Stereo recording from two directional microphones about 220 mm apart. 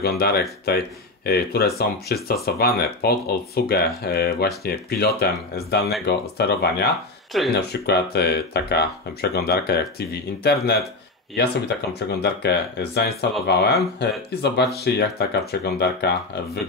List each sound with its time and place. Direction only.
0.0 s speech: 45° left (ahead or behind)